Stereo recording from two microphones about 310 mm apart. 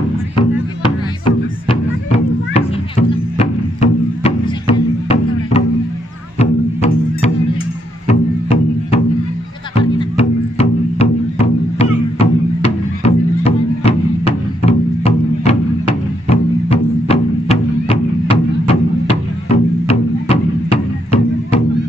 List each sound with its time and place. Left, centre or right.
2.1 s music: centre